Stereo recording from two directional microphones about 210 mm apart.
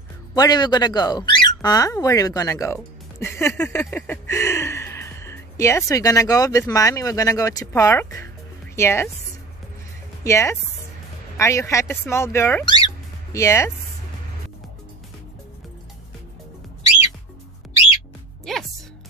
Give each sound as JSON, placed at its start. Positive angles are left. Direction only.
{"t": 0.3, "sound": "speech", "side_deg": 20}
{"t": 10.2, "sound": "speech", "side_deg": 15}
{"t": 18.4, "sound": "music", "side_deg": 0}